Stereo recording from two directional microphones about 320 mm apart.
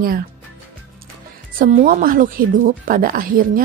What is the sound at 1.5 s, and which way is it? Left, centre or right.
Speech, right.